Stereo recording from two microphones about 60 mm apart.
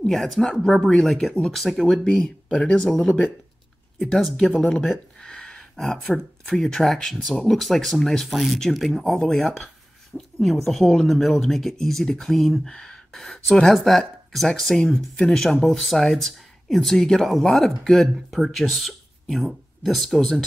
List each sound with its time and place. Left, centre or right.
0.0 s speech: centre
4.5 s speech: centre
12.7 s gasp: centre
13.5 s speech: centre
13.7 s speech: centre